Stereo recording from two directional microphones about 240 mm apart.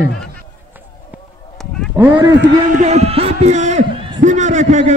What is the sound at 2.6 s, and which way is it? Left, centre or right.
A man's voice, right.